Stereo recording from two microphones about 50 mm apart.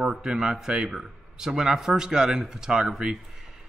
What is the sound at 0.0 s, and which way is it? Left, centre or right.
Speech, centre.